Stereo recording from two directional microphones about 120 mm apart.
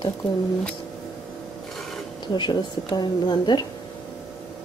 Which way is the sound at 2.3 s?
40° left (ahead or behind).